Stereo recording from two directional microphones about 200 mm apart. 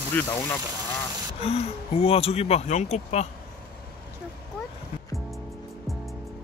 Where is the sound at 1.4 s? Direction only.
30° left (ahead or behind).